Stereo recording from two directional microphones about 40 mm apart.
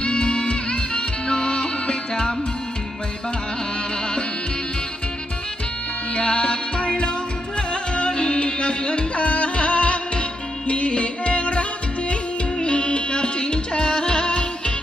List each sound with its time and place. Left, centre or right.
0.0 s music: left
6.1 s music: left